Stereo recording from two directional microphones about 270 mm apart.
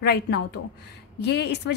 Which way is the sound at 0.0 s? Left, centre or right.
Left.